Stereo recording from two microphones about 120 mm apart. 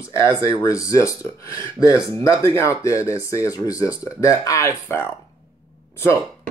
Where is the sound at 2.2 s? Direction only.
25° left (ahead or behind).